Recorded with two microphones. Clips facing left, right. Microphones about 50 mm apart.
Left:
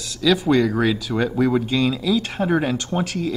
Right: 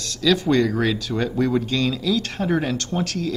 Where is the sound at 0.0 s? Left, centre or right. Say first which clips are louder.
Left 1 dB; centre.